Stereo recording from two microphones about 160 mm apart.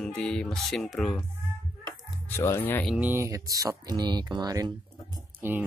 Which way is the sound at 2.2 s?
15° left (ahead or behind).